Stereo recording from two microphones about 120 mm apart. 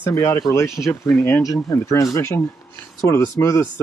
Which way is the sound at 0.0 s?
25° left (ahead or behind).